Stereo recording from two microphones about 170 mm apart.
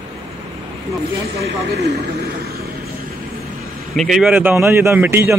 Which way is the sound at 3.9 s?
Centre (ahead or behind).